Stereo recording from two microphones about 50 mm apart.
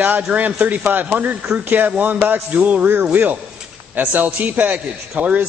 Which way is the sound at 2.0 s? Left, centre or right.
Right.